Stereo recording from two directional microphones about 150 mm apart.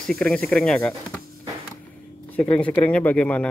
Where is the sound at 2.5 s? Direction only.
10° left (ahead or behind).